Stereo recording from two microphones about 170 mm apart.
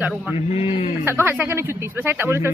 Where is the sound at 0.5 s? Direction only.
35° left (ahead or behind).